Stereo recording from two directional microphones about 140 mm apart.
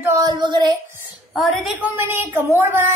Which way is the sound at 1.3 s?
Centre (ahead or behind).